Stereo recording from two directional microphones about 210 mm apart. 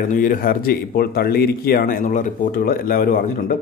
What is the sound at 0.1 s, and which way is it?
Speech, 40° left (ahead or behind).